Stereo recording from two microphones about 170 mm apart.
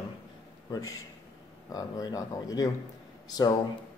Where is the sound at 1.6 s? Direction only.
20° left (ahead or behind).